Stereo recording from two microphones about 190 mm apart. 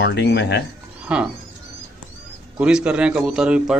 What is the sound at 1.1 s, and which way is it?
Speech, 5° right (ahead or behind).